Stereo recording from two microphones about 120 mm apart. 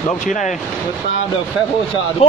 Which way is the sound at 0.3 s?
85° left.